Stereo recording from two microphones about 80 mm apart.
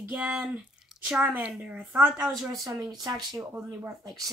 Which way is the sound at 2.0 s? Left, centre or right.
Centre.